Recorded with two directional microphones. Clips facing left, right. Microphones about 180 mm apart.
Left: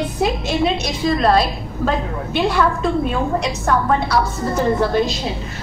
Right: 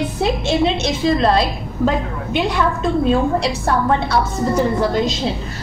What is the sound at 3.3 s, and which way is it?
Speech, 30° right (ahead or behind).